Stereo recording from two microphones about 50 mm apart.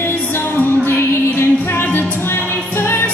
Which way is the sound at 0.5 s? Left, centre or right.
Left.